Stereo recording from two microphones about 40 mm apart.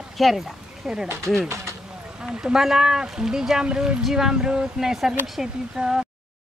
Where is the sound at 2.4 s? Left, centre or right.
Centre.